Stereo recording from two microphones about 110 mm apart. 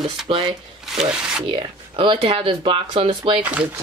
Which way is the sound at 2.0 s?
55° right (ahead or behind).